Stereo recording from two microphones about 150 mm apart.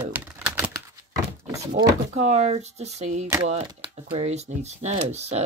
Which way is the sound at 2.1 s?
50° right (ahead or behind).